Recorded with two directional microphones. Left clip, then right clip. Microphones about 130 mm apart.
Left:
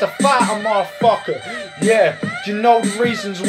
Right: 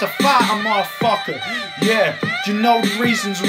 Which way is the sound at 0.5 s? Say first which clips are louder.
Even; 20° left (ahead or behind).